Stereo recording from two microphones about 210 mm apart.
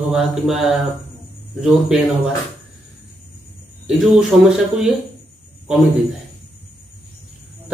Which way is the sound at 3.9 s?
5° right (ahead or behind).